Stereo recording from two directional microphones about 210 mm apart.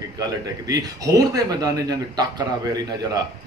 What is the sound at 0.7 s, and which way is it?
Speech, 15° right (ahead or behind).